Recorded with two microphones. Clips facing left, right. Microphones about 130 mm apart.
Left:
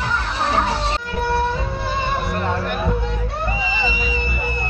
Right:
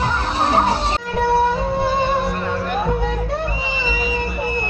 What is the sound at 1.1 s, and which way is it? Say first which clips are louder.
Music: right 5 dB; 25° right (ahead or behind).